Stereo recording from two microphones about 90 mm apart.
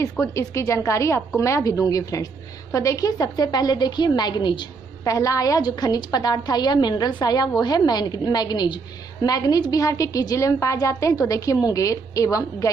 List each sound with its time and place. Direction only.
0.0 s a woman's voice: 35° left (ahead or behind); by 4.6 s 60° left (ahead or behind)
5.0 s a woman's voice: 40° left (ahead or behind)